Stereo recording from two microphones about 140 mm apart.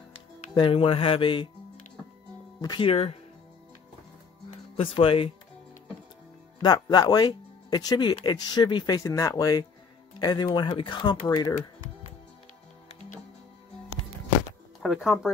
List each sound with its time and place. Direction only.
0.6 s speech: 40° left (ahead or behind)
2.6 s speech: 30° left (ahead or behind)
2.9 s speech: 45° left (ahead or behind)
4.7 s speech: 45° left (ahead or behind)
6.6 s speech: 30° left (ahead or behind)
14.8 s speech: 5° right (ahead or behind)